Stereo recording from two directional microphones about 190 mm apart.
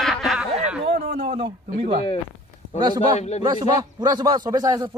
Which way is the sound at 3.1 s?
35° left (ahead or behind).